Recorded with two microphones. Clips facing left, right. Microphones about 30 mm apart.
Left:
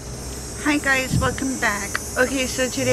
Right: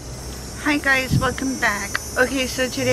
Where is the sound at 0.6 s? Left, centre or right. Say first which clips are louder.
Right 1 dB; centre.